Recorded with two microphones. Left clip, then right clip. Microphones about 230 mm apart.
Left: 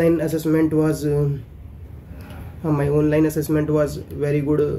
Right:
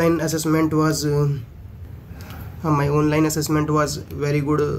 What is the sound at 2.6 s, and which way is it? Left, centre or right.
Speech, centre.